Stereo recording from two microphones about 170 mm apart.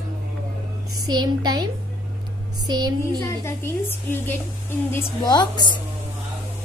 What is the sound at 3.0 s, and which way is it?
A woman's voice, 15° left (ahead or behind).